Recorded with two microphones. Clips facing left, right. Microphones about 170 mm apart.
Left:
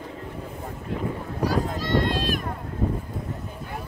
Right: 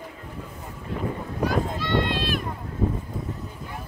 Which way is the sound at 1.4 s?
35° left (ahead or behind).